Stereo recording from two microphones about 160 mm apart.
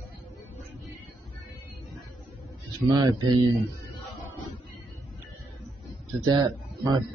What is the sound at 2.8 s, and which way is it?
Speech, 25° right (ahead or behind).